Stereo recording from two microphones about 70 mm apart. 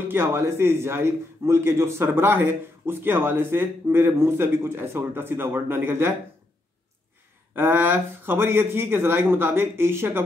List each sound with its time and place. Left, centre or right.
0.1 s a man's voice: right
7.5 s a man's voice: right